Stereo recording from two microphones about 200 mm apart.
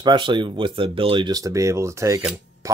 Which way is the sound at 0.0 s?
25° right (ahead or behind).